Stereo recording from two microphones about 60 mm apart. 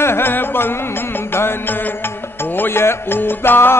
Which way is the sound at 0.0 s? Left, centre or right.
Left.